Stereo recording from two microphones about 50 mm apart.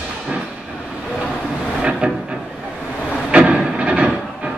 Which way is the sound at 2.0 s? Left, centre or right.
Right.